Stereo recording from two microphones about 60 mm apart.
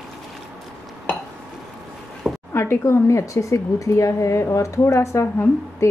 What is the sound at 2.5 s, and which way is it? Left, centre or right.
Speech, left.